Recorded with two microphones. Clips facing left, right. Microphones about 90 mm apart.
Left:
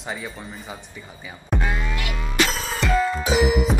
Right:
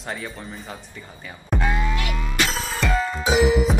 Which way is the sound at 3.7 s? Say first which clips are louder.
Even; centre (ahead or behind).